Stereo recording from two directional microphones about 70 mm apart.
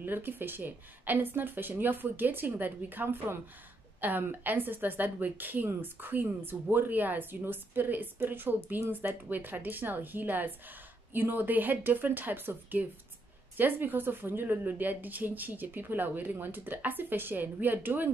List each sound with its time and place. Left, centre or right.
0.0 s a woman's voice: right